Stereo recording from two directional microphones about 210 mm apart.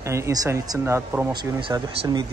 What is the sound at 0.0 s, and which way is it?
A man's voice, 15° right (ahead or behind).